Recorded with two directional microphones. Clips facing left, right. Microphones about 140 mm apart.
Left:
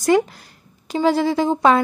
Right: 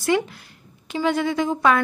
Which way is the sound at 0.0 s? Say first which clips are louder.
Left 5 dB; 40° left (ahead or behind).